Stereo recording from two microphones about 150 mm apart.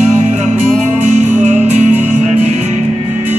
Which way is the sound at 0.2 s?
50° right (ahead or behind).